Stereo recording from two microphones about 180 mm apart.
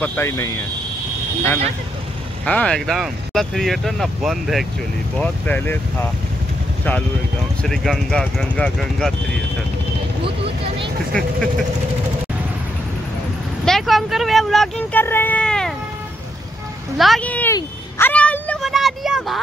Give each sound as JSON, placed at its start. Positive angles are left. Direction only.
{"t": 0.0, "sound": "speech", "side_deg": 10}
{"t": 7.6, "sound": "speech", "side_deg": 0}
{"t": 10.2, "sound": "vehicle", "side_deg": -30}
{"t": 13.7, "sound": "speech", "side_deg": 0}
{"t": 16.9, "sound": "speech", "side_deg": 0}
{"t": 17.6, "sound": "a sound", "side_deg": 10}